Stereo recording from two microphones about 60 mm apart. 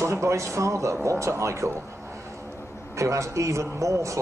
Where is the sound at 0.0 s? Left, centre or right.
Right.